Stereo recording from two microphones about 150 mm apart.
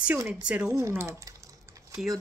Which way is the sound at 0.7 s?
15° right (ahead or behind).